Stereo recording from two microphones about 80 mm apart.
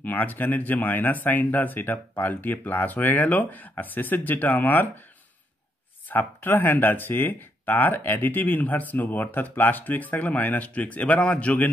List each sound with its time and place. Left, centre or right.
0.0 s speech: left
6.0 s speech: left